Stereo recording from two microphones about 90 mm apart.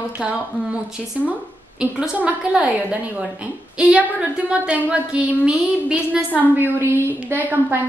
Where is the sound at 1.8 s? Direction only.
10° right (ahead or behind).